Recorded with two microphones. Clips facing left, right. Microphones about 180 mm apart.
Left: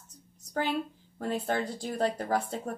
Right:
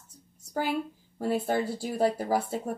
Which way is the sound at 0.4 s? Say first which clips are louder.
Right 1 dB; 10° right (ahead or behind).